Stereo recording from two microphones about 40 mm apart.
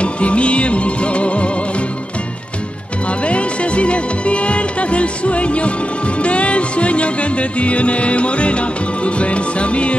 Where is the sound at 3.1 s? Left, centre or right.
Left.